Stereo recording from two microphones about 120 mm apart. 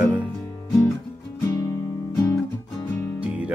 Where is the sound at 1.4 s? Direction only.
25° left (ahead or behind).